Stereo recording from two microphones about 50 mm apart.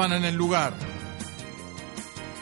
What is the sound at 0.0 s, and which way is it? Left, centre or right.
Speech, right.